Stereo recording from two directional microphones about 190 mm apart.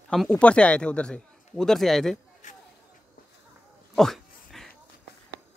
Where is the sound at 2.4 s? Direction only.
40° left (ahead or behind).